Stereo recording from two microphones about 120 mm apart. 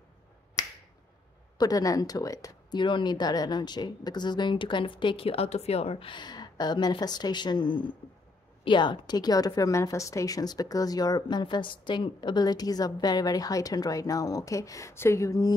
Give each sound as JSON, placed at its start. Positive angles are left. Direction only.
{"t": 1.6, "sound": "a woman's voice", "side_deg": 30}
{"t": 2.8, "sound": "a woman's voice", "side_deg": 40}